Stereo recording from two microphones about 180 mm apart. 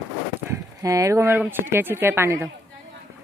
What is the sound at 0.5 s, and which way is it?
Speech, 20° right (ahead or behind).